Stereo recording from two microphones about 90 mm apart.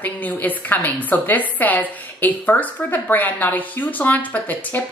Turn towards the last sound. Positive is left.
turn(degrees=20)  # may be behind; listen again after turning